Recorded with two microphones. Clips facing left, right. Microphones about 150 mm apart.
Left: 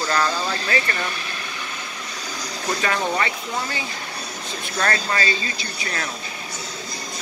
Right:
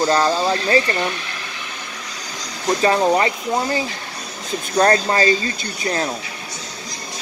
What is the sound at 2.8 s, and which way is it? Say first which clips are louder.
Speech: right 8 dB; 30° right (ahead or behind).